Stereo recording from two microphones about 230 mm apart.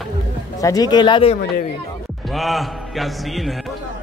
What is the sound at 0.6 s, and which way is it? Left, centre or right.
Speech, centre.